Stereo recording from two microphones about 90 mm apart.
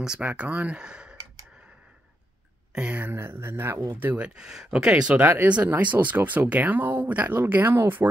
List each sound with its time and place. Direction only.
0.0 s speech: 10° right (ahead or behind)
2.7 s speech: 10° right (ahead or behind)
3.0 s speech: 25° right (ahead or behind)